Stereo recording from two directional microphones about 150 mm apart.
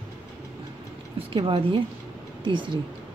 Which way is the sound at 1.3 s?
35° right (ahead or behind).